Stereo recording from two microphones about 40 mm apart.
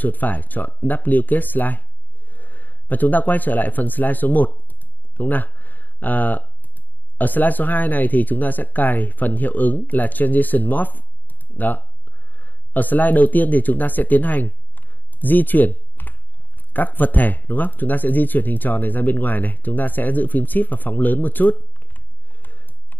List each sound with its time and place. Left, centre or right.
0.0 s speech: left